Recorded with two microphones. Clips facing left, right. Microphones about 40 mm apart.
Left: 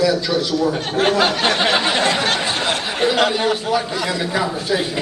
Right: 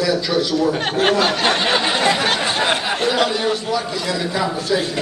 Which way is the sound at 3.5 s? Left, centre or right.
Left.